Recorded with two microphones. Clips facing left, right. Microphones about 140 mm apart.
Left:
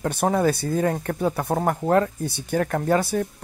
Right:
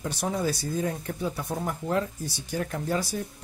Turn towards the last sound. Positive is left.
turn(degrees=60)  # may be behind; listen again after turning